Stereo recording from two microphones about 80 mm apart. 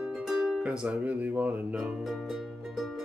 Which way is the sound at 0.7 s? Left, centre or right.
Centre.